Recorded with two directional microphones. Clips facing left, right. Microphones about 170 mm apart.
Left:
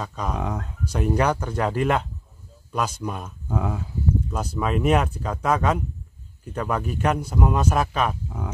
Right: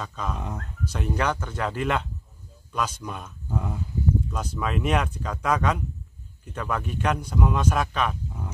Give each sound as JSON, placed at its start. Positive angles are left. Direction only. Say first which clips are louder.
{"t": 0.0, "sound": "a man's voice", "louder": "left 3 dB", "side_deg": 10}
{"t": 0.4, "sound": "speech", "louder": "left 6 dB", "side_deg": 90}
{"t": 0.9, "sound": "a man's voice", "louder": "left 5 dB", "side_deg": 10}
{"t": 3.4, "sound": "speech", "louder": "left 4 dB", "side_deg": 90}
{"t": 4.3, "sound": "a man's voice", "louder": "left 4 dB", "side_deg": 10}